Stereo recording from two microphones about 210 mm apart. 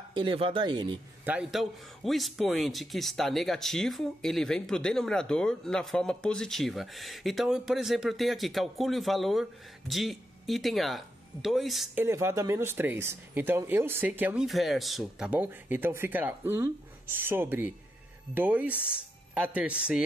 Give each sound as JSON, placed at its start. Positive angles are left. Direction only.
{"t": 0.1, "sound": "speech", "side_deg": -25}
{"t": 1.2, "sound": "a man's voice", "side_deg": -5}